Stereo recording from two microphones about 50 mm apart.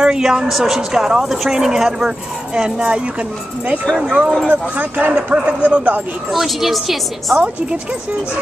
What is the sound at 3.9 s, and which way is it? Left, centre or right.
Speech, centre.